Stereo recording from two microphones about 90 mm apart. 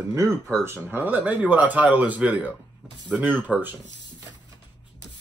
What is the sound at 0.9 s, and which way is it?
Speech, 20° right (ahead or behind).